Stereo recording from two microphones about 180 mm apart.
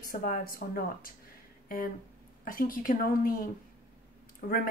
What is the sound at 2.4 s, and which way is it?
Speech, 50° left (ahead or behind).